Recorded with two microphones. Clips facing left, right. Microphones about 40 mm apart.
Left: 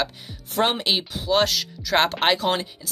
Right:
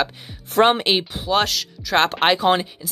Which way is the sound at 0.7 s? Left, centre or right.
Right.